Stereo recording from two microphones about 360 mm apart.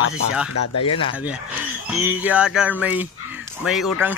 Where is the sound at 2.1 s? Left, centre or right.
Centre.